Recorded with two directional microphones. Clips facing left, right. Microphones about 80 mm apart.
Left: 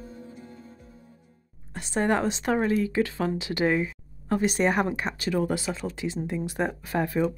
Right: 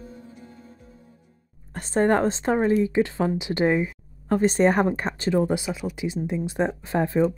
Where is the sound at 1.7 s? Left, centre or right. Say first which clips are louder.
Right 4 dB; right.